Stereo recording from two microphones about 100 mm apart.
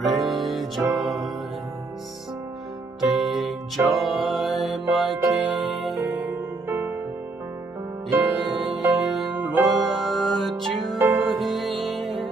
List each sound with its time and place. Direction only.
0.0 s music: centre (ahead or behind)
3.0 s music: centre (ahead or behind)
6.1 s music: 15° right (ahead or behind)
8.4 s music: centre (ahead or behind)
9.3 s music: 20° right (ahead or behind)
9.9 s music: centre (ahead or behind)